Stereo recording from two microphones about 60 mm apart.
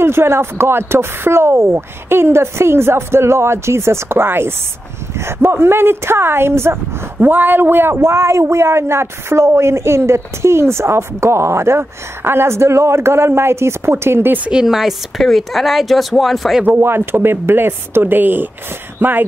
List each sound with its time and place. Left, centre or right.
0.0 s speech: right
7.2 s speech: right
14.5 s speech: centre
16.6 s speech: right